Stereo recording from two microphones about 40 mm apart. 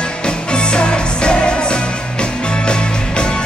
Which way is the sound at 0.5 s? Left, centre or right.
Left.